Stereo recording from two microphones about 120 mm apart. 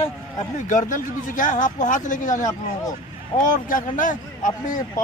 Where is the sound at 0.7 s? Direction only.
90° left.